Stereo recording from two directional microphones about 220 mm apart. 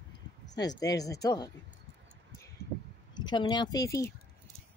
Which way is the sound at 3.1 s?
20° left (ahead or behind).